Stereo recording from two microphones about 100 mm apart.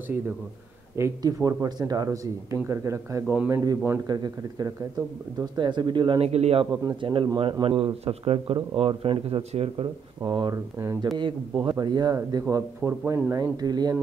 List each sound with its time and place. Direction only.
1.2 s speech: 40° right (ahead or behind)
4.1 s speech: 40° right (ahead or behind)
6.2 s a man's voice: 90° right
6.7 s speech: 35° right (ahead or behind)
7.0 s speech: 55° right (ahead or behind); by 8.5 s 85° right
8.7 s speech: 65° right (ahead or behind)
10.2 s speech: 50° right (ahead or behind)
10.5 s speech: 30° right (ahead or behind)
11.1 s speech: 50° right (ahead or behind); by 13.4 s 25° right (ahead or behind)
13.4 s speech: 40° right (ahead or behind)